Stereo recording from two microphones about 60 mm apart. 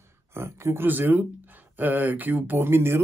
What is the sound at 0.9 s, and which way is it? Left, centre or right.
Speech, right.